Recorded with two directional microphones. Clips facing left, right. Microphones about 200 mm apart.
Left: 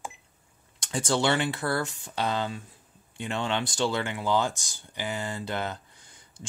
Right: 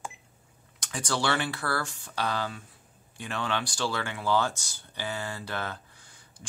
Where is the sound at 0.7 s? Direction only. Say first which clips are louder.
Left 5 dB; 30° left (ahead or behind).